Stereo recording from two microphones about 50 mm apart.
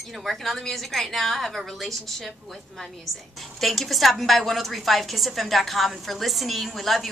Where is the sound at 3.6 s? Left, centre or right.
Centre.